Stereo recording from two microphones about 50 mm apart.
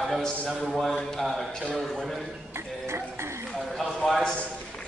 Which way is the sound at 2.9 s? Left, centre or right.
Right.